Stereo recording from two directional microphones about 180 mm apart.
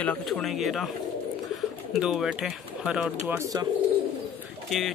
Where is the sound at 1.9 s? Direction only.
Centre (ahead or behind).